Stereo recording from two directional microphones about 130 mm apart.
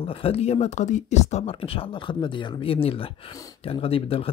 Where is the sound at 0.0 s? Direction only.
45° left (ahead or behind).